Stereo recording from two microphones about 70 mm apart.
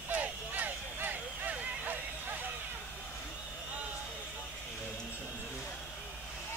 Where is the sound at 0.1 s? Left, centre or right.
Right.